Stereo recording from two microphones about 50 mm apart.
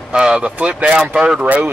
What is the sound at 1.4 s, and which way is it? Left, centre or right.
Speech, right.